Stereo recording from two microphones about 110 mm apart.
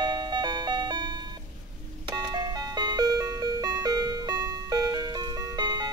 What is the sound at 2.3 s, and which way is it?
Music, 40° right (ahead or behind).